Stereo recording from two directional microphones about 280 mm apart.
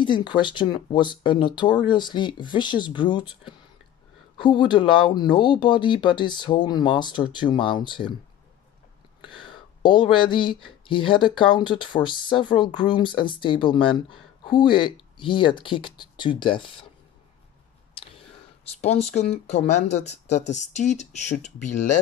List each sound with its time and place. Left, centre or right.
0.0 s speech: centre
9.5 s speech: centre
18.8 s speech: left